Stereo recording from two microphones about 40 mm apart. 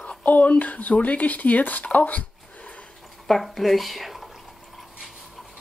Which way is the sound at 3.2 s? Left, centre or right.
Centre.